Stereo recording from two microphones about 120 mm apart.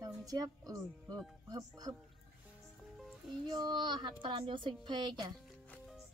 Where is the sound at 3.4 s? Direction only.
35° right (ahead or behind).